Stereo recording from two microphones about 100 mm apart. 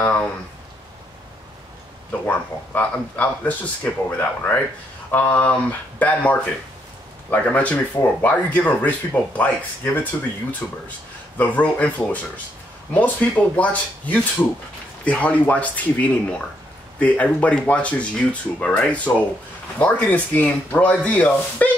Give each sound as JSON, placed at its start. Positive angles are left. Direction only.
{"t": 0.0, "sound": "speech", "side_deg": 15}
{"t": 2.2, "sound": "speech", "side_deg": 15}
{"t": 10.6, "sound": "speech", "side_deg": 25}